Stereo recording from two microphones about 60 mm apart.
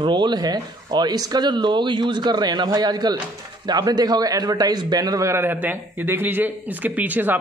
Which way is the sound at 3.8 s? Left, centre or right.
Right.